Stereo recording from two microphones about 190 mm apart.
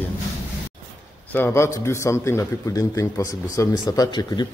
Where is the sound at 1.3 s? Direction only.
10° left (ahead or behind).